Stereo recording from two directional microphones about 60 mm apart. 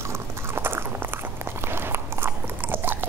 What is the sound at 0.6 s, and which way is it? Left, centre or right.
Biting, right.